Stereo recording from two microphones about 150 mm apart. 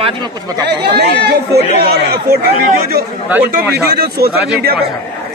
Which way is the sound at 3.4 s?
85° right.